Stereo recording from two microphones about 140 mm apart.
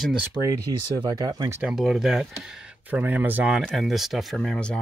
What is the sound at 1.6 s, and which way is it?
Speech, 5° right (ahead or behind).